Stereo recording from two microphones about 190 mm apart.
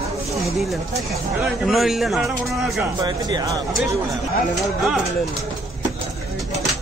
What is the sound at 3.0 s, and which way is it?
Speech, 20° right (ahead or behind).